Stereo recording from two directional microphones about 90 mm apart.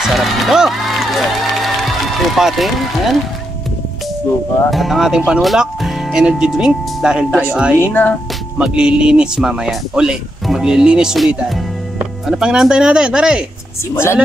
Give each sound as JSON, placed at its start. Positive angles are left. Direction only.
{"t": 0.0, "sound": "speech", "side_deg": 0}
{"t": 4.6, "sound": "speech", "side_deg": 0}
{"t": 7.8, "sound": "speech", "side_deg": 25}
{"t": 8.5, "sound": "speech", "side_deg": -10}